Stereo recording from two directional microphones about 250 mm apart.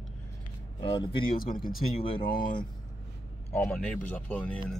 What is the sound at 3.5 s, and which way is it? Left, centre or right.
Speech, centre.